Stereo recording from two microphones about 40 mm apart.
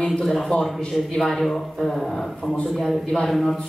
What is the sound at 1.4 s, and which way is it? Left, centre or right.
Mantra, centre.